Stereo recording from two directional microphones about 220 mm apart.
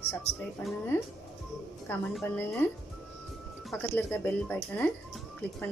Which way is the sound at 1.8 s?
10° left (ahead or behind).